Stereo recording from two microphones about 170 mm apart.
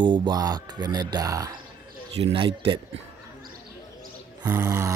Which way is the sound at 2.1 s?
35° right (ahead or behind).